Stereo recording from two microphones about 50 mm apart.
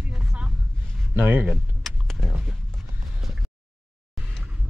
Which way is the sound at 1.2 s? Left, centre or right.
Right.